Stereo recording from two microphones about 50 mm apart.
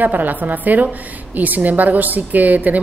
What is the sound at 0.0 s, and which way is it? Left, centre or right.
A woman's voice, right.